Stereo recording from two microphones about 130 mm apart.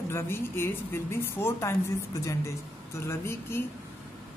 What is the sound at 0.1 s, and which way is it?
Speech, 20° left (ahead or behind).